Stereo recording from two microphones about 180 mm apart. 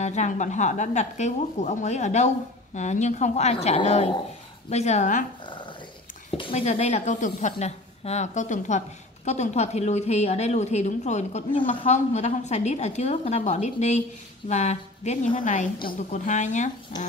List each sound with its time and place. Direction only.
0.0 s speech: 40° left (ahead or behind)
6.3 s a woman's voice: 35° left (ahead or behind)
16.9 s a sound: 25° left (ahead or behind)